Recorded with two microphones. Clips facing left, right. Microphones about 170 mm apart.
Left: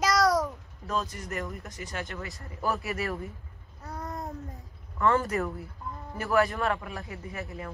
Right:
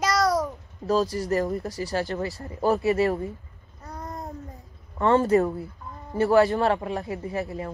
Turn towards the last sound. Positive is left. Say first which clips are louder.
# right 8 dB
turn(degrees=-35)  # may be behind; listen again after turning